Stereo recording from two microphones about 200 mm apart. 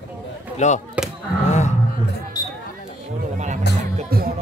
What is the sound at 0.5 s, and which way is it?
Speech, 35° left (ahead or behind).